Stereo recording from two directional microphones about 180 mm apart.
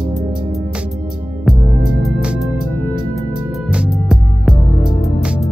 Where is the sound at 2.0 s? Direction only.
5° right (ahead or behind).